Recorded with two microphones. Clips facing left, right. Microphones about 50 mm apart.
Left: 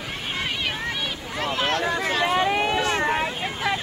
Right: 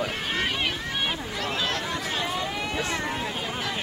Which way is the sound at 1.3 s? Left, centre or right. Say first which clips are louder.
Left 4 dB; left.